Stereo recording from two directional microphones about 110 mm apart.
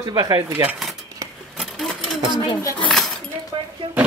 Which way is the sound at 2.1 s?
45° right (ahead or behind).